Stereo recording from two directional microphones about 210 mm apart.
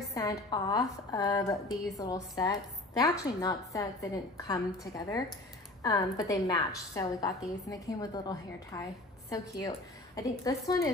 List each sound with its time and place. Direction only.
0.1 s a woman's voice: 15° left (ahead or behind)